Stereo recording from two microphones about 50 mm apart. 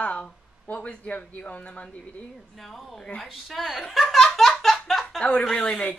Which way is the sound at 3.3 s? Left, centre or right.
Centre.